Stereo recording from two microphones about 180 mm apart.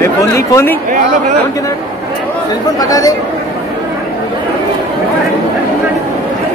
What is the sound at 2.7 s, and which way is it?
Speech, 20° left (ahead or behind).